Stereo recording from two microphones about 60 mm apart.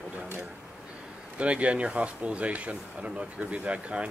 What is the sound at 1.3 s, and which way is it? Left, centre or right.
Speech, right.